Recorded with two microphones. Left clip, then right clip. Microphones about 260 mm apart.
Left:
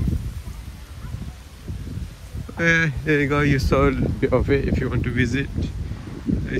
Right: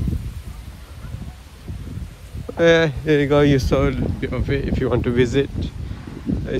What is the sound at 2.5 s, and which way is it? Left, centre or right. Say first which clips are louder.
Speech: right 5 dB; centre.